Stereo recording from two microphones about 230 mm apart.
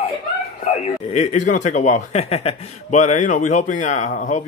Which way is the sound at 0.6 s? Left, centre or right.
Left.